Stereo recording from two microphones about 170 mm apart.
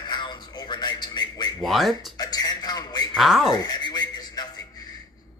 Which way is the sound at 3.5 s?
25° left (ahead or behind).